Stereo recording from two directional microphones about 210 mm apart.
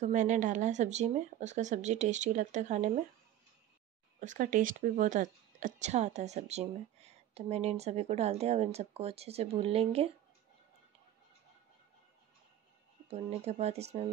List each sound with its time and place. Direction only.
0.0 s a woman's voice: 35° right (ahead or behind)
4.2 s a woman's voice: 35° right (ahead or behind)
13.1 s a woman's voice: 30° right (ahead or behind)